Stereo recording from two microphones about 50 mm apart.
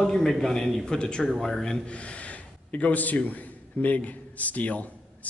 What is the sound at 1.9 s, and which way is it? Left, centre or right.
A man's voice, left.